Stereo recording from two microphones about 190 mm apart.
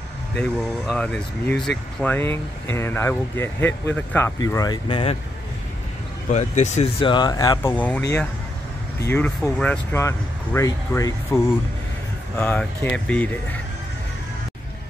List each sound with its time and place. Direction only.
0.4 s speech: 5° left (ahead or behind); by 5.1 s 25° left (ahead or behind)
6.3 s speech: 40° left (ahead or behind); by 8.0 s 10° left (ahead or behind)
9.0 s speech: 10° left (ahead or behind)
12.4 s speech: 10° left (ahead or behind)